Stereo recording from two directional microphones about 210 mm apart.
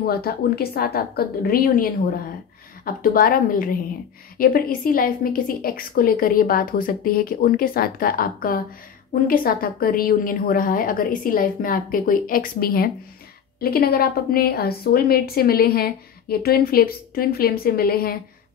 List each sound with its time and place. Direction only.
0.0 s a woman's voice: 45° left (ahead or behind)